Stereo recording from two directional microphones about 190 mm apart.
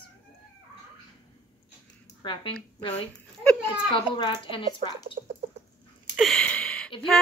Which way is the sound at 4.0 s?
25° left (ahead or behind).